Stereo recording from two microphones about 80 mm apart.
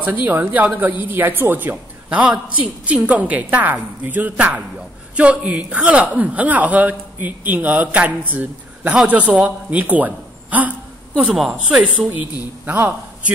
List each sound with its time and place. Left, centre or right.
0.0 s a man's voice: right
12.1 s a man's voice: right